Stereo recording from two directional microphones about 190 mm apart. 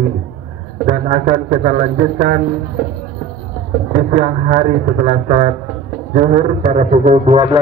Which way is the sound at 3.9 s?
40° right (ahead or behind).